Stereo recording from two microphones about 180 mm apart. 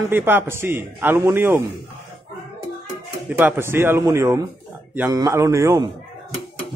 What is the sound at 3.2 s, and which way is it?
A man's voice, 10° right (ahead or behind).